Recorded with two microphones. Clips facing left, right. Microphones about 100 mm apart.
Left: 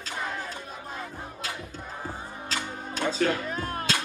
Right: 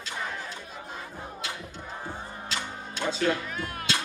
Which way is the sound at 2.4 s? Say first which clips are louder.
Left 3 dB; 40° left (ahead or behind).